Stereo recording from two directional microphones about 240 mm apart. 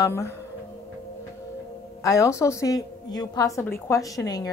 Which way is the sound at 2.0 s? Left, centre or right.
Centre.